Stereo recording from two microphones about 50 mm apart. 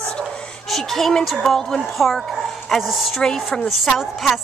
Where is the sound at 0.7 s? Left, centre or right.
Centre.